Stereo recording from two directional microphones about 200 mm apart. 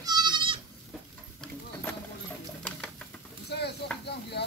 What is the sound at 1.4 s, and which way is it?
Horse, 10° left (ahead or behind).